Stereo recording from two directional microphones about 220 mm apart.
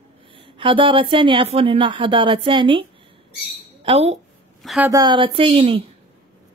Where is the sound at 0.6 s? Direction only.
25° right (ahead or behind).